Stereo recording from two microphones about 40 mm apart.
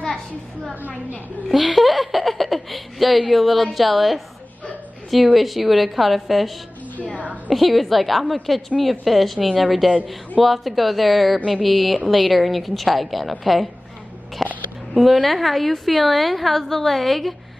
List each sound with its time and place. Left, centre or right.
1.5 s a woman's voice: centre
14.4 s a sound: centre
15.0 s a woman's voice: centre